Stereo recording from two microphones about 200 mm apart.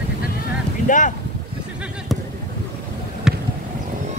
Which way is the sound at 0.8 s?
40° left (ahead or behind).